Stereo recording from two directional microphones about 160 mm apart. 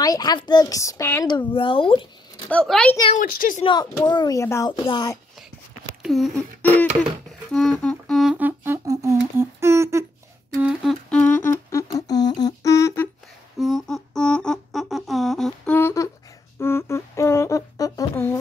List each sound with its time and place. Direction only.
0.0 s speech: 25° left (ahead or behind)
1.5 s speech: 35° left (ahead or behind)
2.5 s a woman's voice: 5° left (ahead or behind)
3.2 s a woman's voice: 55° left (ahead or behind)
3.6 s speech: 25° left (ahead or behind)
6.0 s a sound: centre (ahead or behind)
7.5 s humming: centre (ahead or behind); by 10.0 s 15° right (ahead or behind)
10.6 s humming: centre (ahead or behind); by 13.1 s 15° left (ahead or behind)
13.6 s humming: centre (ahead or behind); by 16.1 s 15° left (ahead or behind)
16.5 s a sound: 15° left (ahead or behind)